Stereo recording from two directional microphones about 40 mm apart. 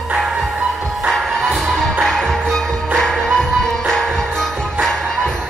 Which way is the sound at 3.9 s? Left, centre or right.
Centre.